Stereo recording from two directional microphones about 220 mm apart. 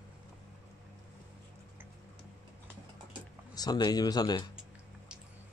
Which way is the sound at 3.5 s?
15° left (ahead or behind).